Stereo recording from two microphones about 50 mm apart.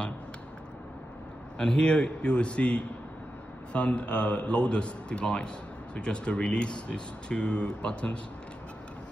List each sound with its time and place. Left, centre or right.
1.6 s speech: centre